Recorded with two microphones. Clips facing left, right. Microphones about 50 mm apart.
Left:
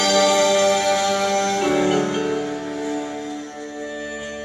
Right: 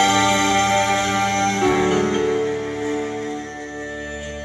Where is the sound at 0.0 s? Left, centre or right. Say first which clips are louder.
Even; right.